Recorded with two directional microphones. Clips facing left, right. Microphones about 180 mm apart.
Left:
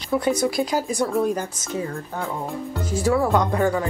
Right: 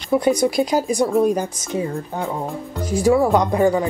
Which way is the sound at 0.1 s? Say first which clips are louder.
Right 4 dB; 15° right (ahead or behind).